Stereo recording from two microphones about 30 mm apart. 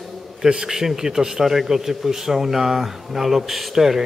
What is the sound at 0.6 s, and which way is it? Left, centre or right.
A man's voice, centre.